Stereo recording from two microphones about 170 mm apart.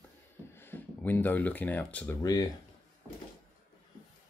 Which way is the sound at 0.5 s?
10° left (ahead or behind).